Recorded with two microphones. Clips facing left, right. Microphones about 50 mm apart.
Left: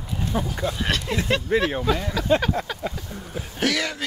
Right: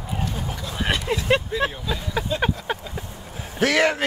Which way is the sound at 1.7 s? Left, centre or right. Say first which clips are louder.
Left 6 dB; left.